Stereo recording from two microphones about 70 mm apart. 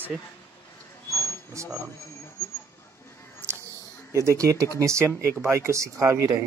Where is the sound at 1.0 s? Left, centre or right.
Left.